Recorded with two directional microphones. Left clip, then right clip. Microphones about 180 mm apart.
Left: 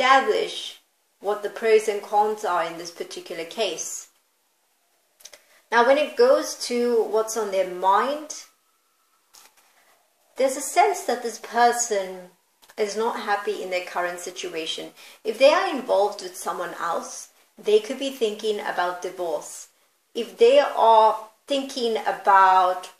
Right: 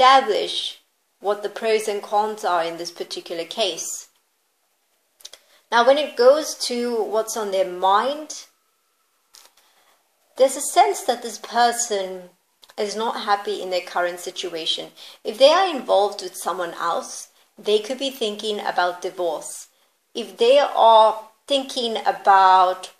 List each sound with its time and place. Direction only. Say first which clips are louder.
0.0 s a woman's voice: right 4 dB; 35° right (ahead or behind)
5.3 s a woman's voice: right 2 dB; 35° right (ahead or behind)
10.3 s a woman's voice: right 4 dB; 35° right (ahead or behind)
12.7 s a woman's voice: even; 35° right (ahead or behind)